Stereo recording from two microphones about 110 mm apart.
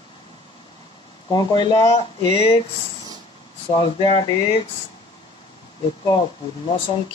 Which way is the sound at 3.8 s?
50° left (ahead or behind).